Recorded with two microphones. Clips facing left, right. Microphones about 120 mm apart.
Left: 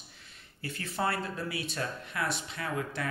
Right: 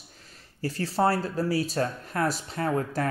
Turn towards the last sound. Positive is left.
turn(degrees=-45)  # may be behind; listen again after turning